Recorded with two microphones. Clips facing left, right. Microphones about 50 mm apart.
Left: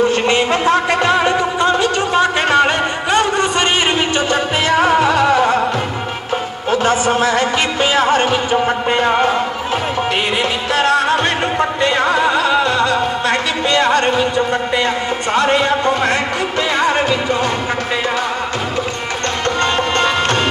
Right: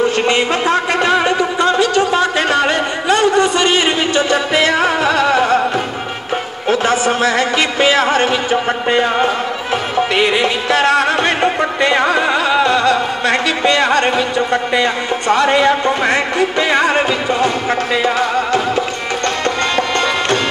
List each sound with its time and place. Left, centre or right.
0.3 s music: right
1.6 s a sound: left
10.7 s music: right
12.2 s music: centre
13.3 s a sound: right
19.6 s music: left